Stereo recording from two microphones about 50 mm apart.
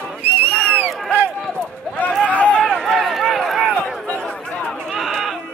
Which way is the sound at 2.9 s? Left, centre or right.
Centre.